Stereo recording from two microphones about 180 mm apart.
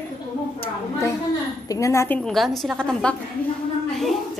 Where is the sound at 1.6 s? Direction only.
20° left (ahead or behind).